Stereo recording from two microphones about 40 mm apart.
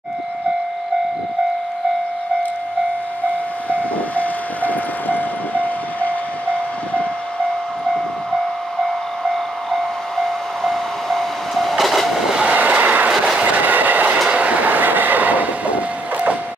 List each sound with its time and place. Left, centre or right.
4.2 s train: left
8.8 s train: centre
12.4 s vehicle: right
13.4 s train: right
14.3 s train: right
14.6 s train: right